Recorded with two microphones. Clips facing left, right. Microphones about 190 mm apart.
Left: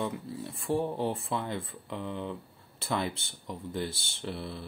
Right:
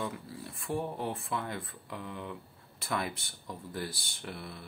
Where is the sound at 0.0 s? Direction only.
20° left (ahead or behind).